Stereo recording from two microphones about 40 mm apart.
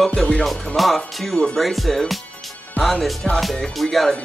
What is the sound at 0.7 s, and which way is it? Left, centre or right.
Speech, centre.